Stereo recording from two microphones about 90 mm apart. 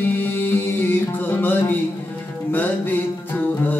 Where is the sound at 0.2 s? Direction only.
20° left (ahead or behind).